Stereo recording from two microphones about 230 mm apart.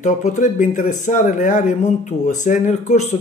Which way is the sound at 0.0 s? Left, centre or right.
Left.